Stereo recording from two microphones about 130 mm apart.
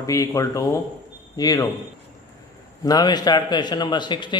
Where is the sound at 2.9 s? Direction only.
30° left (ahead or behind).